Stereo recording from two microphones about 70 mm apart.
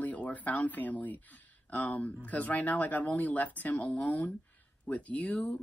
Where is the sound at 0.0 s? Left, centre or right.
Left.